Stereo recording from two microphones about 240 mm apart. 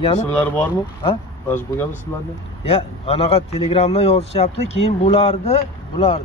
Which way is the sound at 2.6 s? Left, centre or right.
Left.